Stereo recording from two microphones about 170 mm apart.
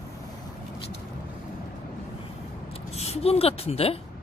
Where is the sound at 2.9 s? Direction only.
40° left (ahead or behind).